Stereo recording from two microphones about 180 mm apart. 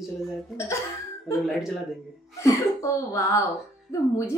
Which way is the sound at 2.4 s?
15° left (ahead or behind).